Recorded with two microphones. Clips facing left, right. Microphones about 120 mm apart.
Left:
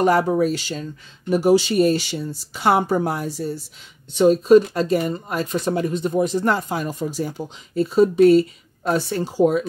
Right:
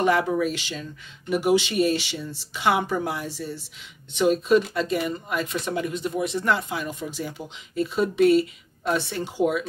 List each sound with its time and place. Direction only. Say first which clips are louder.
0.0 s speech: left 4 dB; 40° left (ahead or behind)